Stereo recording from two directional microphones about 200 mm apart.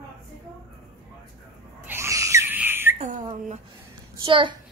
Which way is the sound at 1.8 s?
15° right (ahead or behind).